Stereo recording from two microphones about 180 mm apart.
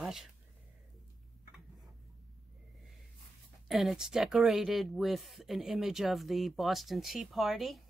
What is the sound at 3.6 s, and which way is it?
Speech, centre (ahead or behind).